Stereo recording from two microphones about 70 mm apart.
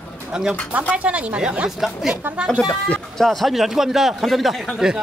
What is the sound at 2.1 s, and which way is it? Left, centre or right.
Speech, right.